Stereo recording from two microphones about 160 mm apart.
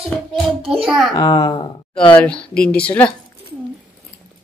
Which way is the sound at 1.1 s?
25° left (ahead or behind).